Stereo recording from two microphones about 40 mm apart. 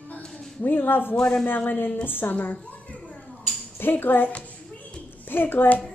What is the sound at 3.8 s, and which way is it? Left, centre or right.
A woman's voice, left.